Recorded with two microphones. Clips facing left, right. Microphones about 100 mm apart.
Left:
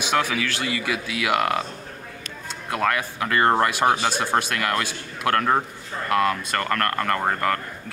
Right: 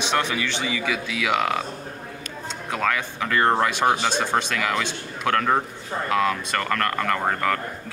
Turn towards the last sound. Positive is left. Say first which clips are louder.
# even
turn(degrees=0)  # may be behind; listen again after turning